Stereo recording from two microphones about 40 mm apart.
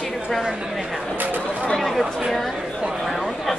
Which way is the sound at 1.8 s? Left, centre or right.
Centre.